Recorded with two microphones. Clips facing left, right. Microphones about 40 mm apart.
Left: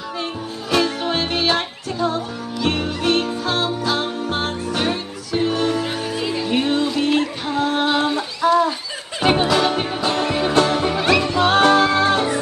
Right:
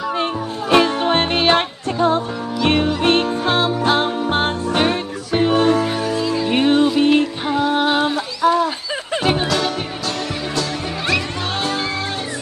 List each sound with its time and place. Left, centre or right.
0.7 s music: right
6.1 s music: left
6.5 s music: right
7.5 s music: centre
8.4 s a sound: centre
9.2 s music: centre; by 11.2 s left
11.3 s music: left